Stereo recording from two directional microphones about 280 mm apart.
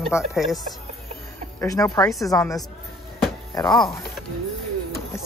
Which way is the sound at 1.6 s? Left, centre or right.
Centre.